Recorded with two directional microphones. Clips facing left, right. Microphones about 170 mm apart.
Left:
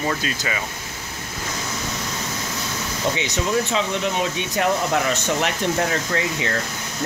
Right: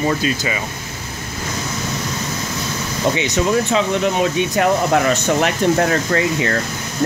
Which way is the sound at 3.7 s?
55° right (ahead or behind).